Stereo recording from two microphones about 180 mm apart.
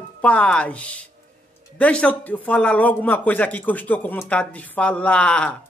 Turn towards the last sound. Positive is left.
turn(degrees=5)  # may be behind; listen again after turning